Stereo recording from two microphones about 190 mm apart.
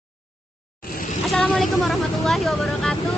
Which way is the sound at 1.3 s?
5° left (ahead or behind).